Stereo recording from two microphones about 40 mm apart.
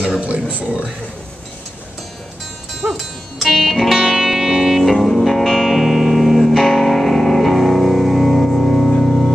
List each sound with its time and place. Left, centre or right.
0.2 s speech: right
2.8 s music: centre